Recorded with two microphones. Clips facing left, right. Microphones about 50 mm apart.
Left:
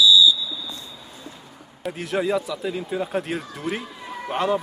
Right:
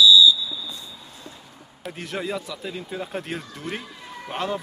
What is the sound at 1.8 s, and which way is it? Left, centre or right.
Speech, centre.